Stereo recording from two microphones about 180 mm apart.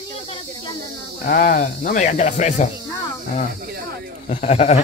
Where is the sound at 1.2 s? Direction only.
45° left (ahead or behind).